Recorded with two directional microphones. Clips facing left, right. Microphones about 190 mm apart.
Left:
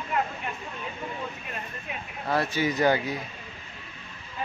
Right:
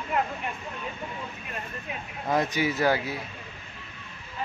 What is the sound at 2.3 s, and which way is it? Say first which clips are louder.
Speech: right 1 dB; 15° right (ahead or behind).